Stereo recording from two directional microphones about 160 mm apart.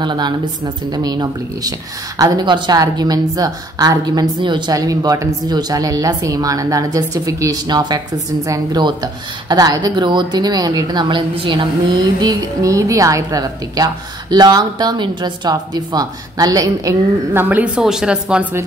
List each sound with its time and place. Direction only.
0.0 s speech: 30° right (ahead or behind); by 18.6 s 10° right (ahead or behind)